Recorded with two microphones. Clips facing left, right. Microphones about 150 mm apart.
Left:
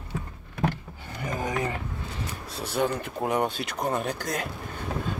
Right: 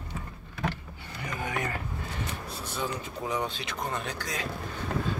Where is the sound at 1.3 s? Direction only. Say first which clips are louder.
Left 4 dB; 35° left (ahead or behind).